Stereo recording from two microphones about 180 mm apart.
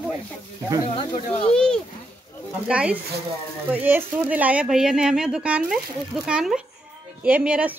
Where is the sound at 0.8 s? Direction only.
35° left (ahead or behind).